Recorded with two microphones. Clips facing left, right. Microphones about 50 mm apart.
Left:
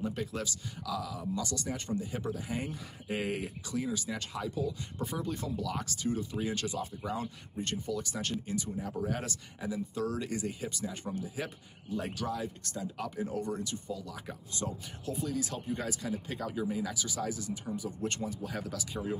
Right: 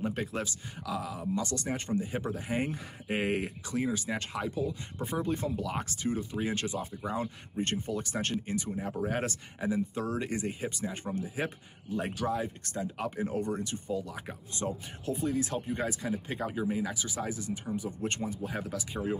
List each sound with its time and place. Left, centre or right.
0.0 s speech: right